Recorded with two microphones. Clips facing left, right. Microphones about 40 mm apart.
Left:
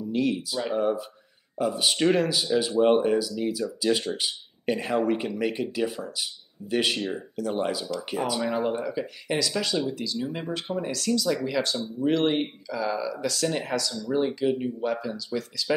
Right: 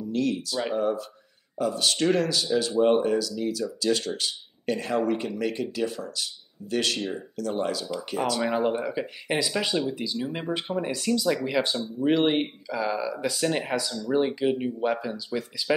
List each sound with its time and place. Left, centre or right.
0.0 s speech: centre
8.4 s speech: centre